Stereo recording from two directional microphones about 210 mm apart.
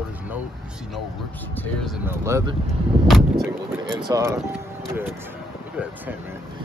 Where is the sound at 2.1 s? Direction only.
15° right (ahead or behind).